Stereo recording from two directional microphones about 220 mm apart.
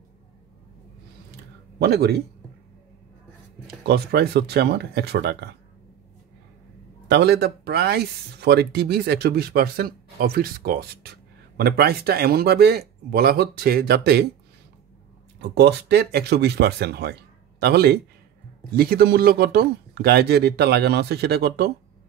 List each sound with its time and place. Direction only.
1.8 s speech: 45° right (ahead or behind)
3.6 s speech: 45° right (ahead or behind)
7.1 s speech: 50° right (ahead or behind)
15.4 s speech: 50° right (ahead or behind)